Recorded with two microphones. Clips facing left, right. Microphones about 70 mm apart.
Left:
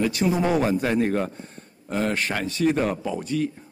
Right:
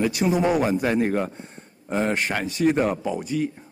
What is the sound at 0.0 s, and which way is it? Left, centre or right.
Speech, centre.